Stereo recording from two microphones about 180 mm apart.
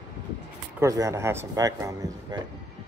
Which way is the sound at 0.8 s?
20° right (ahead or behind).